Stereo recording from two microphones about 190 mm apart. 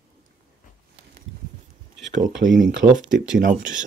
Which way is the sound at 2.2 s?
45° right (ahead or behind).